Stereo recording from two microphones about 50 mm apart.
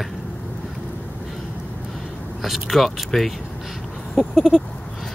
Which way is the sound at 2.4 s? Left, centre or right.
Centre.